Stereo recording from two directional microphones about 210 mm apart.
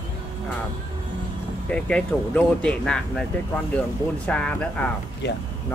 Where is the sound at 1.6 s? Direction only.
5° left (ahead or behind).